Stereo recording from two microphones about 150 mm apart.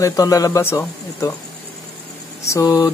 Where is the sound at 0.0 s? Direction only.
25° left (ahead or behind).